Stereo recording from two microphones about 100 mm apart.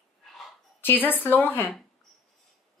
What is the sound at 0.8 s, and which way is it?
Speech, 20° left (ahead or behind).